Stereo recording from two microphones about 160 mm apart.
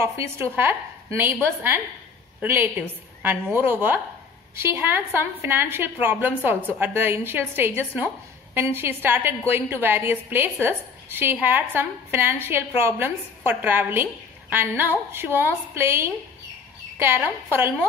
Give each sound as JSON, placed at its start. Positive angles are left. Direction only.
{"t": 0.0, "sound": "a woman's voice", "side_deg": -15}